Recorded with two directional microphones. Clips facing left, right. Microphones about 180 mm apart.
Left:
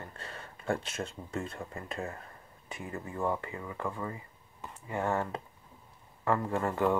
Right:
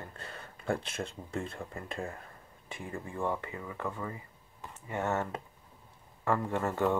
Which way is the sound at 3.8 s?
25° left (ahead or behind).